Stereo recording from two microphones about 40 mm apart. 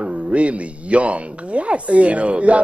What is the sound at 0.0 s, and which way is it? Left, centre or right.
Speech, right.